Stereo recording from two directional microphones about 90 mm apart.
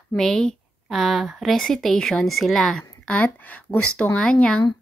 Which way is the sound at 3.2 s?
15° left (ahead or behind).